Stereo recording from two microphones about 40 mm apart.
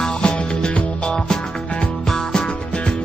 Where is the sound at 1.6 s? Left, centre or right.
Left.